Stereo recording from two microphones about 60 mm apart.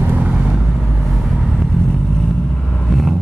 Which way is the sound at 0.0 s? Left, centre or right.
Right.